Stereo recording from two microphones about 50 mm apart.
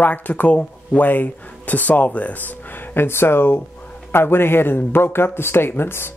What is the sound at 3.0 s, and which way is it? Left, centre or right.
Speech, left.